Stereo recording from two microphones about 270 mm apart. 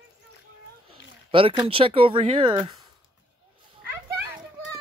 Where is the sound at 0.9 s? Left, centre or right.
Centre.